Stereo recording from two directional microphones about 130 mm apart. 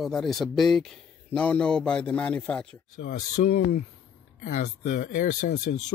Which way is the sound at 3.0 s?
75° left (ahead or behind).